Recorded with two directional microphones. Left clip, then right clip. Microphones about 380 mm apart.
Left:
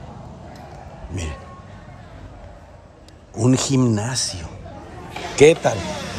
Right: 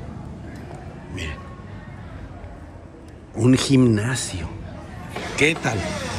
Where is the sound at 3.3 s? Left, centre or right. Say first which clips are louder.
Right 1 dB; centre.